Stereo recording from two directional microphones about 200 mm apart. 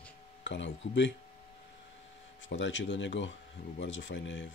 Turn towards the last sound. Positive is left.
turn(degrees=70)  # may be behind; listen again after turning